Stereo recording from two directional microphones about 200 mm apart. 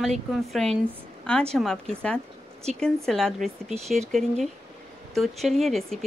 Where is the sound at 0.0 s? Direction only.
Centre (ahead or behind).